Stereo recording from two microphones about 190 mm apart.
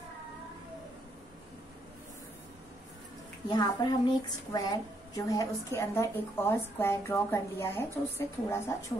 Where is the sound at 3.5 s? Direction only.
20° left (ahead or behind).